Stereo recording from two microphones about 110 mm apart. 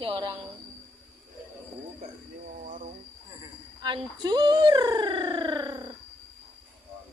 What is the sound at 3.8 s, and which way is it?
Speech, 40° right (ahead or behind).